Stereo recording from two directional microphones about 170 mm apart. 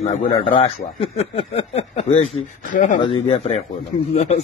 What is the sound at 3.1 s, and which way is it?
Speech, 35° left (ahead or behind).